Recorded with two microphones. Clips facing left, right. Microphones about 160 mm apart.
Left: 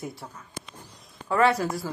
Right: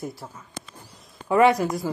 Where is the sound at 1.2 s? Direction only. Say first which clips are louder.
Right 4 dB; 15° right (ahead or behind).